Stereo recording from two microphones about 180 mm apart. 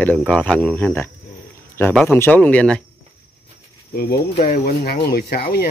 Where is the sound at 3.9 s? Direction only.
60° left (ahead or behind).